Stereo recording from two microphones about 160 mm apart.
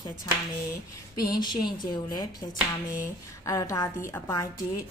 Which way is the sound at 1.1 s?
25° left (ahead or behind).